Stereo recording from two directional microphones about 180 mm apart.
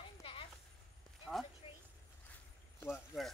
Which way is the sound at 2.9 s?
Centre (ahead or behind).